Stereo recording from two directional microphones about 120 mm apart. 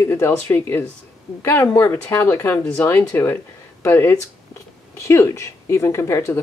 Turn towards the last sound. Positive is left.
turn(degrees=20)  # may be behind; listen again after turning